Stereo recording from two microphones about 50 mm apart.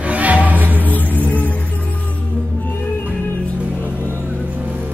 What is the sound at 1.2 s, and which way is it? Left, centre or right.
Music, left.